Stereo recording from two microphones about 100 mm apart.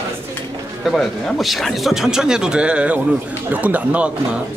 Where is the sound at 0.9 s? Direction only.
5° left (ahead or behind); by 4.1 s 15° right (ahead or behind).